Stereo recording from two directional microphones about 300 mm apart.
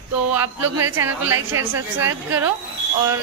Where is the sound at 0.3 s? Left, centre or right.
Centre.